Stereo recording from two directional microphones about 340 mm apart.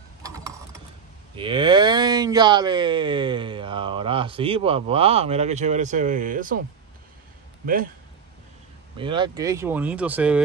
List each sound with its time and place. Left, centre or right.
0.2 s mechanisms: centre
1.3 s speech: centre
7.6 s speech: right
8.9 s speech: centre